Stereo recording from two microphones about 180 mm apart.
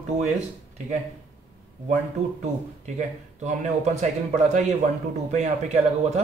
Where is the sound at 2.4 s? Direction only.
40° right (ahead or behind).